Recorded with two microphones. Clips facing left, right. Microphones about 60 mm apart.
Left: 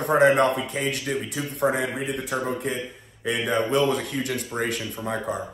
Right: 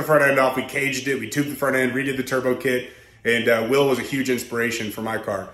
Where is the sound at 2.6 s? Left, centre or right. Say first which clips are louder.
Right 6 dB; right.